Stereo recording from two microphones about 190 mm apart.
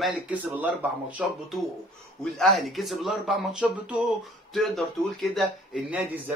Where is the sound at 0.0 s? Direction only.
10° right (ahead or behind).